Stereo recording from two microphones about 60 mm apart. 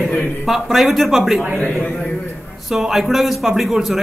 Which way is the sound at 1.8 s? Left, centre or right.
Left.